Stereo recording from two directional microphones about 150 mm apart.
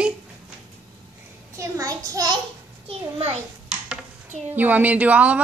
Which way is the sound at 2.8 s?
40° right (ahead or behind).